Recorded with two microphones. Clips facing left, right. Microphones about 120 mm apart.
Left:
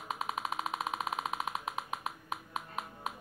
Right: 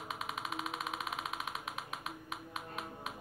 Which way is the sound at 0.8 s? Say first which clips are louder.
Left 5 dB; 45° left (ahead or behind).